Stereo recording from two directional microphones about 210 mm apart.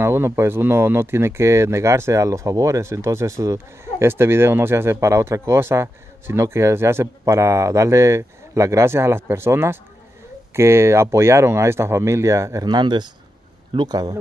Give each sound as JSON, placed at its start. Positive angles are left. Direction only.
{"t": 0.0, "sound": "speech", "side_deg": -10}